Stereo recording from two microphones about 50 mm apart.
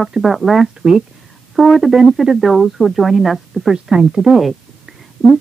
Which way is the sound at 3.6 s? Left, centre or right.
Centre.